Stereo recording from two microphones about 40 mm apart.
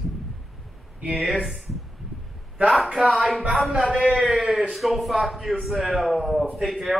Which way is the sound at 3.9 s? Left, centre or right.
Right.